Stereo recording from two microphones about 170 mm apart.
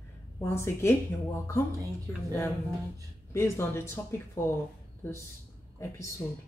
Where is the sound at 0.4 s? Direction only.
15° left (ahead or behind).